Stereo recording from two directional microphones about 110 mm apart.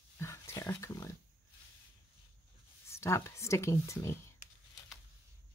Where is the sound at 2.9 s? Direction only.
25° left (ahead or behind).